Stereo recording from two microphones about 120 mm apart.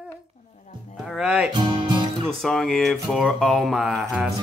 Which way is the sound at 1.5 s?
40° right (ahead or behind).